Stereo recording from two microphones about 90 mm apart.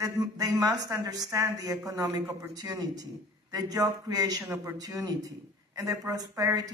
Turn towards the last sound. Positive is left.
turn(degrees=-40)  # may be behind; listen again after turning